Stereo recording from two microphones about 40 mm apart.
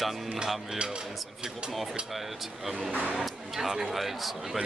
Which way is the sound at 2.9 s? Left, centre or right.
Right.